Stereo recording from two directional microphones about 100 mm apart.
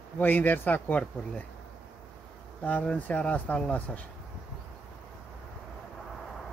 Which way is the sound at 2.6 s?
15° left (ahead or behind).